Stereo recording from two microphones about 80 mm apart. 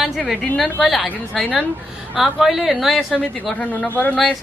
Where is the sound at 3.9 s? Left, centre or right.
Left.